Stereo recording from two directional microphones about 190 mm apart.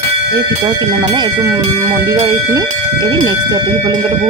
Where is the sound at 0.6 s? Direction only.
20° right (ahead or behind).